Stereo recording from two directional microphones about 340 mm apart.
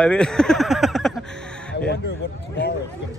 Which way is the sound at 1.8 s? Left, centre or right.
Left.